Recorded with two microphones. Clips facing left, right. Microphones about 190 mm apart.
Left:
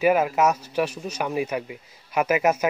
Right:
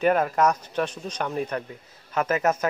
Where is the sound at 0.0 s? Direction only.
5° left (ahead or behind).